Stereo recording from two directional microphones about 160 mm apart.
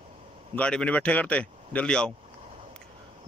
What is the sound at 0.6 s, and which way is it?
Speech, 5° left (ahead or behind).